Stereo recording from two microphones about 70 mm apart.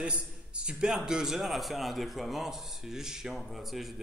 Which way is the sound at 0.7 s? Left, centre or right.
Centre.